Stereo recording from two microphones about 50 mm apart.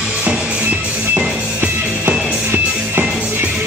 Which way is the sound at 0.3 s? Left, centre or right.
Centre.